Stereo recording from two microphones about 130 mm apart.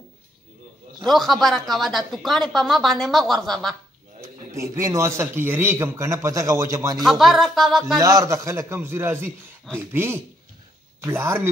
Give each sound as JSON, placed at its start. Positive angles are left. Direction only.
{"t": 1.0, "sound": "a woman's voice", "side_deg": 0}
{"t": 4.2, "sound": "a man's voice", "side_deg": -25}
{"t": 7.0, "sound": "a woman's voice", "side_deg": 0}
{"t": 8.0, "sound": "a man's voice", "side_deg": -25}